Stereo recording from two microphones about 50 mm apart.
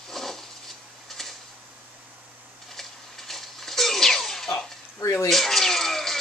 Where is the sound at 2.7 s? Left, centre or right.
Centre.